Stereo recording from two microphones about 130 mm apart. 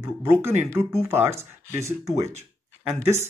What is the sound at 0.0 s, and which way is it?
Speech, 20° right (ahead or behind).